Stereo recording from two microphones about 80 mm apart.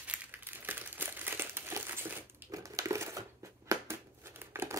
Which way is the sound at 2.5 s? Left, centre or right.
Right.